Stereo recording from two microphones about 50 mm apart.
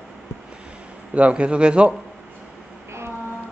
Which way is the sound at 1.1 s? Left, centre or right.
Right.